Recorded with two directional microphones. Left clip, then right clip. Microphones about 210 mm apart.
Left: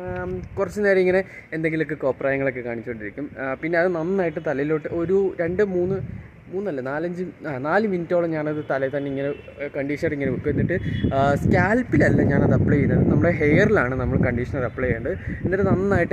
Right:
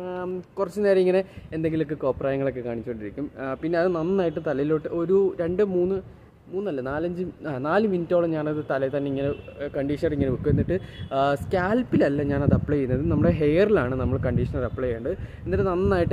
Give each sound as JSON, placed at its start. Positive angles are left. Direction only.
{"t": 0.1, "sound": "speech", "side_deg": 0}